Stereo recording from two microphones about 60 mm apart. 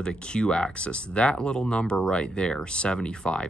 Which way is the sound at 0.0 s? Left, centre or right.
Centre.